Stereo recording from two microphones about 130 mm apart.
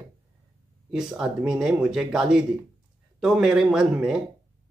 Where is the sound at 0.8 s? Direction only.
5° right (ahead or behind).